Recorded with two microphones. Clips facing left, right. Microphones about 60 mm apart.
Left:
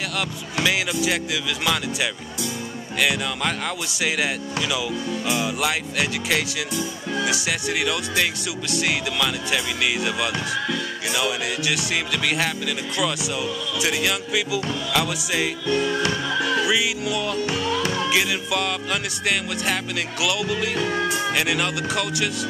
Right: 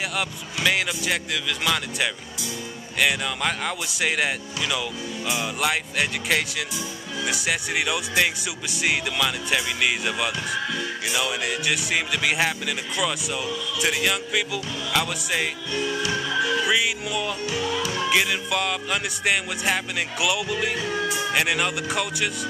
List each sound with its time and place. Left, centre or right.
0.7 s speech: centre
15.7 s music: left
16.5 s speech: centre
17.5 s music: left
18.1 s speech: centre
20.7 s music: left
21.3 s speech: centre